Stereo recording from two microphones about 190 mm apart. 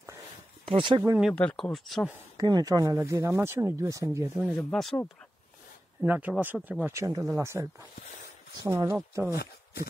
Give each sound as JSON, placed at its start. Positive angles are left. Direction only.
{"t": 0.7, "sound": "speech", "side_deg": -25}
{"t": 1.2, "sound": "speech", "side_deg": 5}
{"t": 2.3, "sound": "speech", "side_deg": -20}
{"t": 4.5, "sound": "speech", "side_deg": 5}
{"t": 6.0, "sound": "speech", "side_deg": -10}